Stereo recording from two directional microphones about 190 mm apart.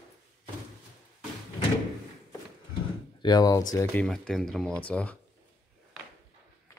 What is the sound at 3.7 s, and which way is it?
Speech, 5° left (ahead or behind).